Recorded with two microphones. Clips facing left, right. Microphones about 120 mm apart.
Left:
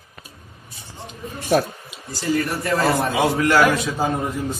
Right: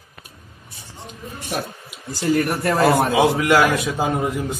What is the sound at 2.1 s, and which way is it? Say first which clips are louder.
A man's voice: right 3 dB; 55° right (ahead or behind).